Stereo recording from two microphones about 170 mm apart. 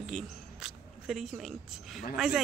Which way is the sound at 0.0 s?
Centre (ahead or behind).